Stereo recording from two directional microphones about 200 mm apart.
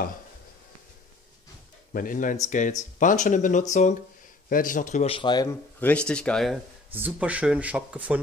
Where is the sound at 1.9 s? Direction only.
45° left (ahead or behind); by 5.5 s 20° left (ahead or behind).